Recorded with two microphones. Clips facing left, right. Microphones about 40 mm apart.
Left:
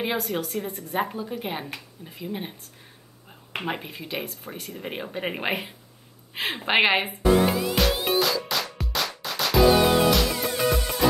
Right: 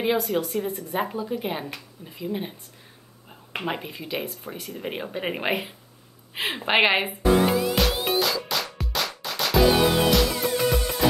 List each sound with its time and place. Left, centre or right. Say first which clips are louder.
0.4 s a woman's voice: right 3 dB; centre
6.6 s music: right 1 dB; centre